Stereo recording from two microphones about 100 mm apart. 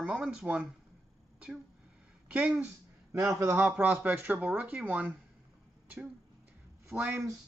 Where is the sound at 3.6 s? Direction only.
10° right (ahead or behind).